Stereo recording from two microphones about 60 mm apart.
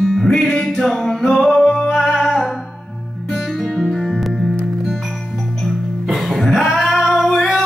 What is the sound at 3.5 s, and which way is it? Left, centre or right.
Music, centre.